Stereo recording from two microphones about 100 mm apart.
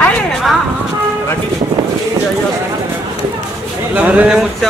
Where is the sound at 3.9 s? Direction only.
15° right (ahead or behind).